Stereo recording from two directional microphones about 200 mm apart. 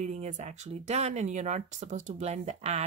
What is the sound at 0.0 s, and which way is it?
Speech, 35° right (ahead or behind).